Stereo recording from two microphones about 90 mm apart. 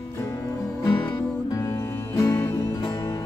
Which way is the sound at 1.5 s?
35° left (ahead or behind).